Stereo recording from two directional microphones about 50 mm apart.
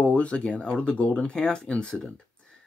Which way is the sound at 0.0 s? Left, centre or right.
Left.